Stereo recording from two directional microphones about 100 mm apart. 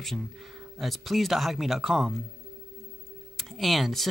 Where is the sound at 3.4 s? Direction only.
Centre (ahead or behind).